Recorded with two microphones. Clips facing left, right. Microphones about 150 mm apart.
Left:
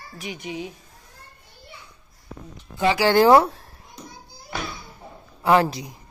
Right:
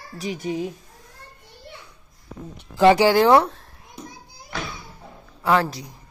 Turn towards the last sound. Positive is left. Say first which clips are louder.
# left 2 dB
turn(degrees=15)  # may be behind; listen again after turning